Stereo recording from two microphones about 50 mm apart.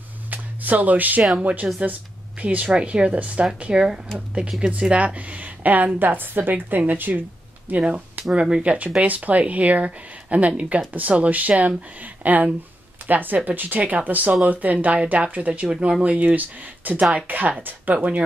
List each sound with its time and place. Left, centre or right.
0.3 s music: right
1.4 s speech: right
3.7 s speech: centre; by 7.8 s right
8.4 s speech: right
15.7 s speech: centre
16.0 s speech: right